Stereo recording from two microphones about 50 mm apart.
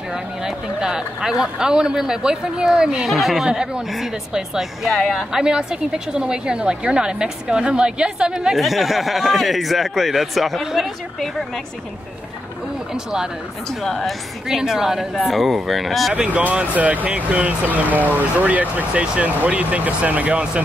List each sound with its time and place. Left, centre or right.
0.1 s a woman's voice: centre
3.1 s speech: centre
3.4 s a woman's voice: centre
8.5 s speech: centre
12.9 s a woman's voice: centre
13.8 s speech: centre
14.5 s a woman's voice: centre
16.3 s speech: right